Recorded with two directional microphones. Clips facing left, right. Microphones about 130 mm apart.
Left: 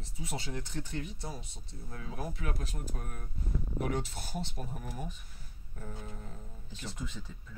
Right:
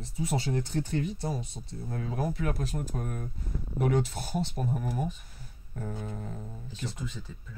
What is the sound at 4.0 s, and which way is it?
Speech, 40° right (ahead or behind).